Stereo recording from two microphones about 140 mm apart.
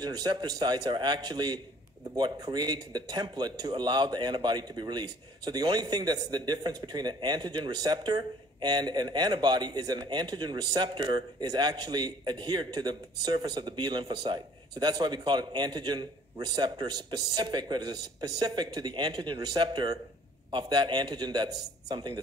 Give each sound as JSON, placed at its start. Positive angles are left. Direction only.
{"t": 0.0, "sound": "a man's voice", "side_deg": -30}